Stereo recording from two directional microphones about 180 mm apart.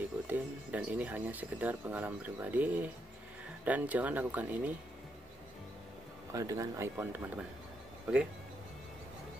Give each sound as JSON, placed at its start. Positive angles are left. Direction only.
{"t": 0.3, "sound": "speech", "side_deg": -10}
{"t": 6.3, "sound": "speech", "side_deg": -20}